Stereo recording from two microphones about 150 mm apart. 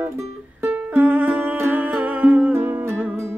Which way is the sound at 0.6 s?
15° right (ahead or behind).